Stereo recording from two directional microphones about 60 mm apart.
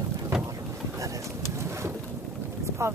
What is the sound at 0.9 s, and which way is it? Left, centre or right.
Pigeon, right.